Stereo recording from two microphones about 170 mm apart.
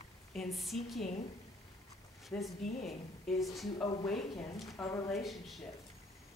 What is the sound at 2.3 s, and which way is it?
A woman's voice, 10° left (ahead or behind).